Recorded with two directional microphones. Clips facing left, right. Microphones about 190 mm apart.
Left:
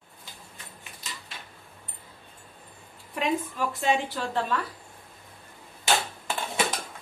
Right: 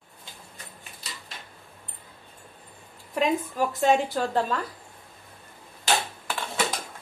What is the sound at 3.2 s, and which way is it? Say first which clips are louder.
A woman's voice: right 3 dB; 45° right (ahead or behind).